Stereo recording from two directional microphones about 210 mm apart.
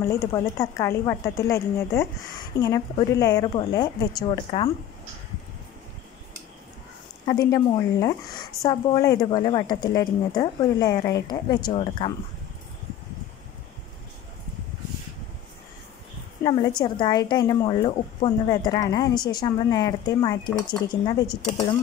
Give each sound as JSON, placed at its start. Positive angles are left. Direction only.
{"t": 0.1, "sound": "a woman's voice", "side_deg": 15}
{"t": 7.2, "sound": "a woman's voice", "side_deg": 15}
{"t": 16.4, "sound": "a woman's voice", "side_deg": 20}